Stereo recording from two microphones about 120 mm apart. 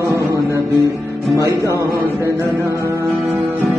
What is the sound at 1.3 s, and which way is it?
Music, 25° right (ahead or behind).